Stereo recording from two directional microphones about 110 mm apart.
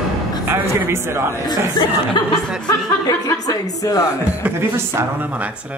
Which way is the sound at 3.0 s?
35° left (ahead or behind).